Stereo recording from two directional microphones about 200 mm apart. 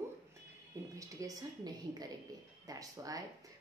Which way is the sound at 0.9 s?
15° right (ahead or behind).